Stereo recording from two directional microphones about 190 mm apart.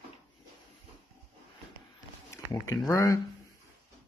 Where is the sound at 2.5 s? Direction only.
15° left (ahead or behind).